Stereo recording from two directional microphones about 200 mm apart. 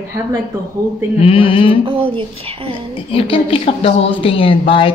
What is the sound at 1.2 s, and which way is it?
Speech, 25° left (ahead or behind).